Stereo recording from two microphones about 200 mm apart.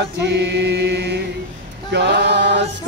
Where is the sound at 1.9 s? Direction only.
55° right (ahead or behind).